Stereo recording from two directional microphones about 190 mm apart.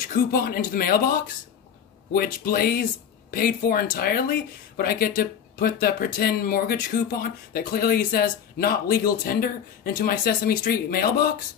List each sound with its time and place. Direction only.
0.1 s speech: 50° left (ahead or behind)